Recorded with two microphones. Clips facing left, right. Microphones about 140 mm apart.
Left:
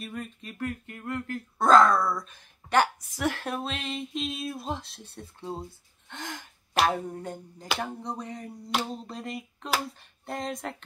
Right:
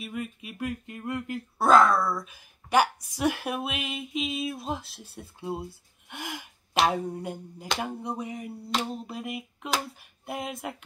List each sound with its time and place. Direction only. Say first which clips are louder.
0.0 s speech: right 2 dB; 5° right (ahead or behind)
1.7 s a woman's voice: even; centre (ahead or behind)